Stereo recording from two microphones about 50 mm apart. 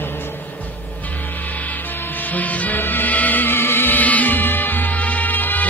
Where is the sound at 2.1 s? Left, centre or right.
Left.